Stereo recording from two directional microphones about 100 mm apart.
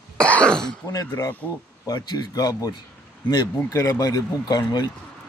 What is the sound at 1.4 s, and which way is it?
Speech, 15° left (ahead or behind).